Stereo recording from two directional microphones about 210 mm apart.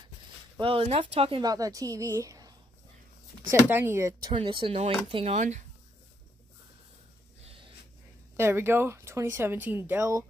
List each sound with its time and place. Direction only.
0.6 s speech: 25° right (ahead or behind)
3.6 s speech: 10° right (ahead or behind)
4.3 s speech: 25° right (ahead or behind)
8.4 s speech: 10° right (ahead or behind)